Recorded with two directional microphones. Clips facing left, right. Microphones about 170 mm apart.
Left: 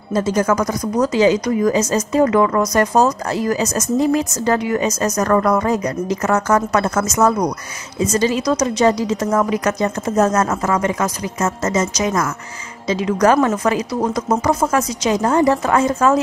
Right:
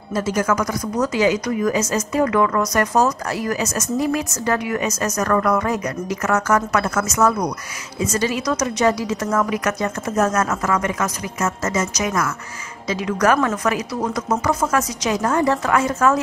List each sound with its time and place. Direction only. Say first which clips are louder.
0.5 s speech: left 3 dB; 35° left (ahead or behind)